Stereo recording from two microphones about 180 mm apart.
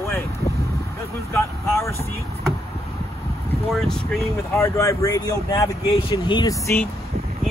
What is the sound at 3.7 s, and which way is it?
Speech, 5° left (ahead or behind).